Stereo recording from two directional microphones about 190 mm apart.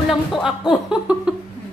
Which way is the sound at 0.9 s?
5° right (ahead or behind).